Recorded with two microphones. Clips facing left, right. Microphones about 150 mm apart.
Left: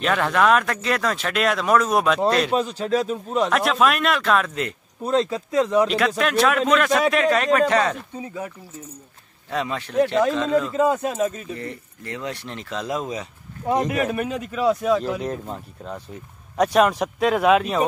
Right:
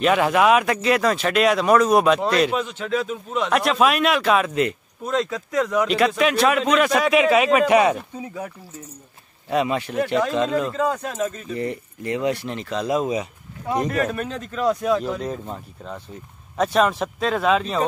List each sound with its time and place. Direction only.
0.0 s speech: 5° right (ahead or behind)
2.5 s speech: 35° left (ahead or behind)
3.4 s speech: centre (ahead or behind)
5.0 s speech: 30° left (ahead or behind)
5.9 s speech: centre (ahead or behind)
9.5 s speech: 15° right (ahead or behind)
10.8 s speech: 5° left (ahead or behind)
11.5 s speech: 15° right (ahead or behind)
13.8 s speech: 10° left (ahead or behind)